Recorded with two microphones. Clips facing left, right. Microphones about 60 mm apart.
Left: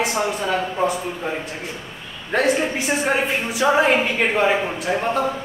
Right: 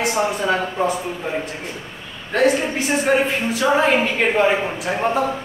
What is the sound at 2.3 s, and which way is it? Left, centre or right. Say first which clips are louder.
Speech: right 3 dB; centre.